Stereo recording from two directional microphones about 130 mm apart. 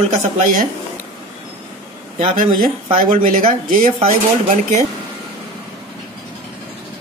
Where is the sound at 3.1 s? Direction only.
90° right.